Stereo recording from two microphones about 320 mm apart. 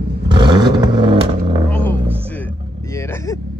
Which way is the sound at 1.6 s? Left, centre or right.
Centre.